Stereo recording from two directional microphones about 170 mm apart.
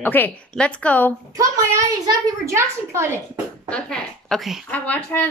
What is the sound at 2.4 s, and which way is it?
Speech, 15° right (ahead or behind).